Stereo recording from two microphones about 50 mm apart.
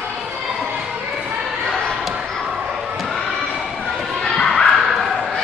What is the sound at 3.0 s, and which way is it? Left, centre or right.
Crowd, centre.